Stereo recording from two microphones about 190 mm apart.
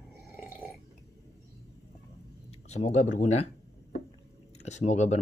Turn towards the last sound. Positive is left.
turn(degrees=40)  # may be behind; listen again after turning